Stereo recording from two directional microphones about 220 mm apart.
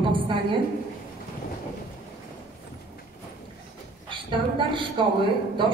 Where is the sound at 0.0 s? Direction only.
25° right (ahead or behind).